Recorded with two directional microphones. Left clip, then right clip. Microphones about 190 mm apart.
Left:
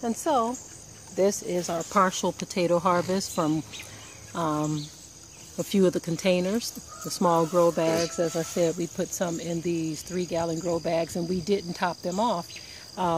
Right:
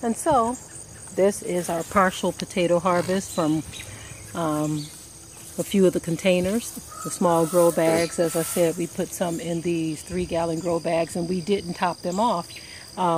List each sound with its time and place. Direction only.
0.0 s speech: 10° left (ahead or behind)
7.4 s speech: 5° left (ahead or behind)
8.5 s speech: 15° left (ahead or behind)